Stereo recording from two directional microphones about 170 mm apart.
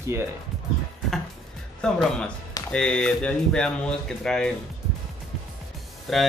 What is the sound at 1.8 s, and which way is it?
Speech, 5° left (ahead or behind).